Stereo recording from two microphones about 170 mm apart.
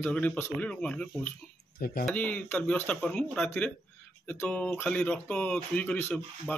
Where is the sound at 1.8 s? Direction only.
55° left (ahead or behind).